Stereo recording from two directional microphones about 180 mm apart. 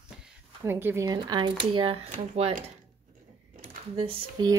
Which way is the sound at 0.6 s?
15° right (ahead or behind).